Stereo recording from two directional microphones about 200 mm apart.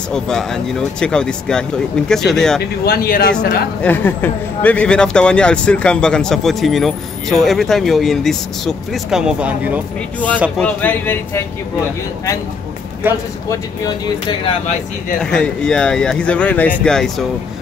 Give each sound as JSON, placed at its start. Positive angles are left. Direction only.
{"t": 0.1, "sound": "speech", "side_deg": 0}
{"t": 2.8, "sound": "speech", "side_deg": 50}
{"t": 3.8, "sound": "speech", "side_deg": 10}
{"t": 10.6, "sound": "speech", "side_deg": 10}
{"t": 13.0, "sound": "speech", "side_deg": -10}
{"t": 15.2, "sound": "speech", "side_deg": 5}